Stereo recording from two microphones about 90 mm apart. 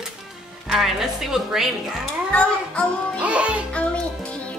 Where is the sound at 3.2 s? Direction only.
15° right (ahead or behind).